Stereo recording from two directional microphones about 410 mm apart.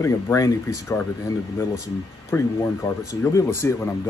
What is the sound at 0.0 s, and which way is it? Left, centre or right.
Speech, centre.